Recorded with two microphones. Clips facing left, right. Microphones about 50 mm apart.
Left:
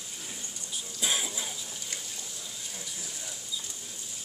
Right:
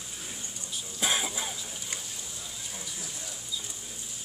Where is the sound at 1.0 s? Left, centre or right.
Right.